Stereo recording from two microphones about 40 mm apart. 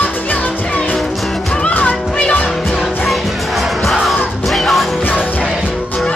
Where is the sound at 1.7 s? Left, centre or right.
Left.